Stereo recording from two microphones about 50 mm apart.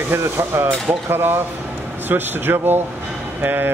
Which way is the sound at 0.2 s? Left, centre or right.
Right.